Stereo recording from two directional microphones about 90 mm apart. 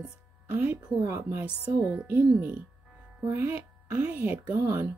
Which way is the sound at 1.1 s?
30° right (ahead or behind).